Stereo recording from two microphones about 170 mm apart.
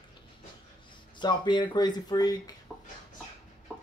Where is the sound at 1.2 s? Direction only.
25° left (ahead or behind).